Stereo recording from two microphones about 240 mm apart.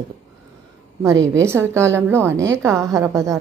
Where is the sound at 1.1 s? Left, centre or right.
Right.